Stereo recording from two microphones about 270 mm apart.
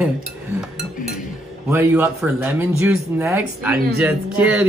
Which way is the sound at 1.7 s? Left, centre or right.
Centre.